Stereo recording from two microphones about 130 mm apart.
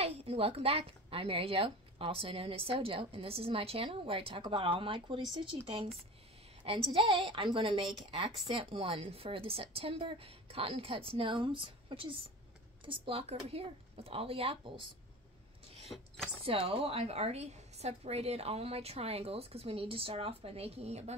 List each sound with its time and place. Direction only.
0.0 s speech: 50° right (ahead or behind)
15.9 s speech: 20° left (ahead or behind)
16.4 s speech: 45° right (ahead or behind)